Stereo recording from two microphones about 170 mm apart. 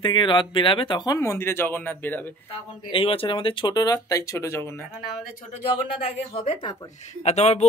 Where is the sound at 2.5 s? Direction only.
30° left (ahead or behind); by 5.0 s 15° left (ahead or behind).